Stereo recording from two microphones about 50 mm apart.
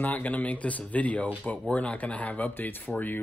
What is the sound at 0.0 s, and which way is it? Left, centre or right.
Speech, left.